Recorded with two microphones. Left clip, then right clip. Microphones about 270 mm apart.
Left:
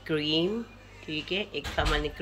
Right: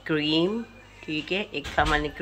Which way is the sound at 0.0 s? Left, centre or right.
Centre.